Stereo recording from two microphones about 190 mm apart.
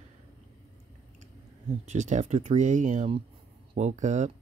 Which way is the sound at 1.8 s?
40° right (ahead or behind).